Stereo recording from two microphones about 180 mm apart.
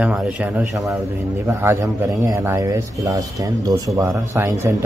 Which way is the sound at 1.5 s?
15° right (ahead or behind).